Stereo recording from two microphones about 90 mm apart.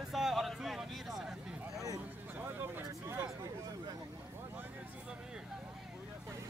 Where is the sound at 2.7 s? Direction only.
20° right (ahead or behind).